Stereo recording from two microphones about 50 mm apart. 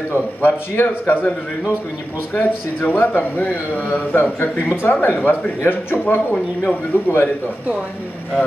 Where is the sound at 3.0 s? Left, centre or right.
Left.